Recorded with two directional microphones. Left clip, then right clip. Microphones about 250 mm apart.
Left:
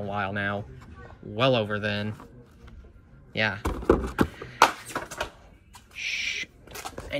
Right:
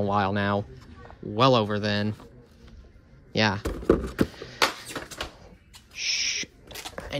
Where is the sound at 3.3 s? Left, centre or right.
Centre.